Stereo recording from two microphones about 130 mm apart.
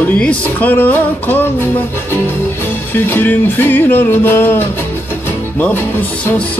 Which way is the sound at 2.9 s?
15° left (ahead or behind).